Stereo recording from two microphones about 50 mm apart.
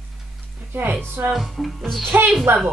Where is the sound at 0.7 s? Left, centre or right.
Right.